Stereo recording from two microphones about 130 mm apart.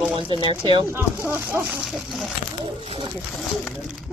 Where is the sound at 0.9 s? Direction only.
20° right (ahead or behind); by 2.3 s centre (ahead or behind).